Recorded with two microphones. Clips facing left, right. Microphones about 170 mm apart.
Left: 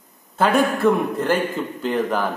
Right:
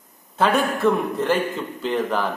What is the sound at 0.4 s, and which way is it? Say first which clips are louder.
Speech: left 2 dB; centre (ahead or behind).